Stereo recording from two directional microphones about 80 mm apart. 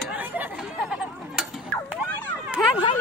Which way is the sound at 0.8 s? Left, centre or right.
Centre.